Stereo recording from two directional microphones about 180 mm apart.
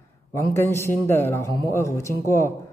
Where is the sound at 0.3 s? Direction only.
15° left (ahead or behind).